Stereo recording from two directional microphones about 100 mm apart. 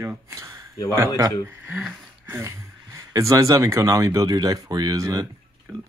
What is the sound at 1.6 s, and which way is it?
Speech, 15° right (ahead or behind).